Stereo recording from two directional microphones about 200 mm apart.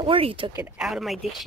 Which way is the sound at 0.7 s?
Centre (ahead or behind).